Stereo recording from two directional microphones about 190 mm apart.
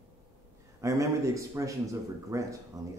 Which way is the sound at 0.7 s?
15° right (ahead or behind).